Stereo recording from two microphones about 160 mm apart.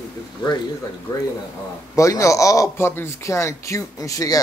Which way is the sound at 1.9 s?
20° left (ahead or behind).